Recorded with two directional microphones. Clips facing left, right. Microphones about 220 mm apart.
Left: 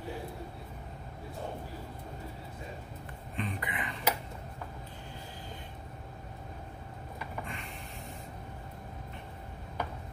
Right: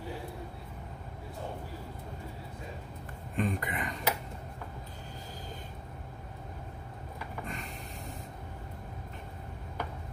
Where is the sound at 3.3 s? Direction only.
45° right (ahead or behind).